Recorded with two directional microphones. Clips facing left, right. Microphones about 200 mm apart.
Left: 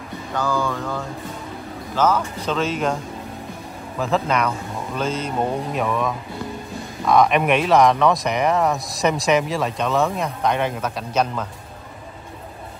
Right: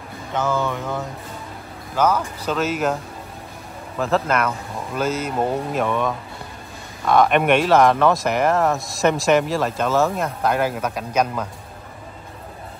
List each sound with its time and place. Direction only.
0.3 s music: 20° right (ahead or behind)
2.0 s speech: 10° right (ahead or behind)
4.0 s speech: centre (ahead or behind)